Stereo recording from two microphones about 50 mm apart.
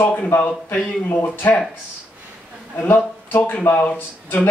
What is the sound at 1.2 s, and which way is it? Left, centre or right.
Speech, left.